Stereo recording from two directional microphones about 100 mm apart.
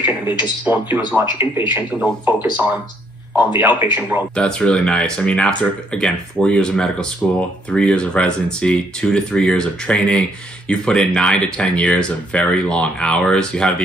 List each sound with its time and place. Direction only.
0.7 s speech: 15° right (ahead or behind)
3.3 s speech: 20° right (ahead or behind)
4.4 s speech: 10° left (ahead or behind)